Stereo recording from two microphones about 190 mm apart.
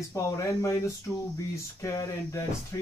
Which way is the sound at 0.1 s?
15° left (ahead or behind).